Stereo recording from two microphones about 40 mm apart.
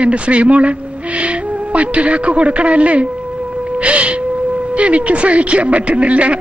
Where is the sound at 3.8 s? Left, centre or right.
Right.